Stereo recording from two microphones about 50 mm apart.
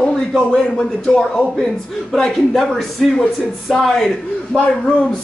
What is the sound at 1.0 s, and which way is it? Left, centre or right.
Speech, centre.